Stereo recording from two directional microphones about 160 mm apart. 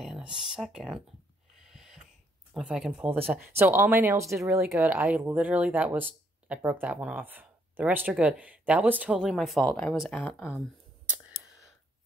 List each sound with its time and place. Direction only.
0.0 s speech: 5° right (ahead or behind)
1.7 s a sound: 5° right (ahead or behind)
2.5 s speech: 5° right (ahead or behind)
10.2 s speech: 15° left (ahead or behind)